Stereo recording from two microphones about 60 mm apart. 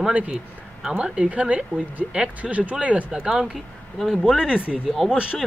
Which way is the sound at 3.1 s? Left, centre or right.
Centre.